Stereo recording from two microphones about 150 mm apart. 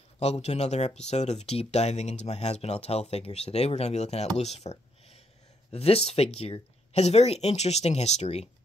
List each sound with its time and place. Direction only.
0.2 s speech: 45° left (ahead or behind)